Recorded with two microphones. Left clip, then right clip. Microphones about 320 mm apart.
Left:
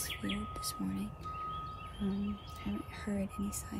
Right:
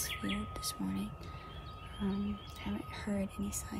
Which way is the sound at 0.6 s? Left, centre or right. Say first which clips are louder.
Even; centre.